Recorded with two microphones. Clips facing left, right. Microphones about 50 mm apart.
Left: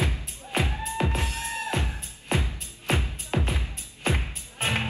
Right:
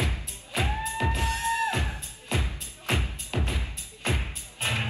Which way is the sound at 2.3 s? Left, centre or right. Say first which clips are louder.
Left 3 dB; left.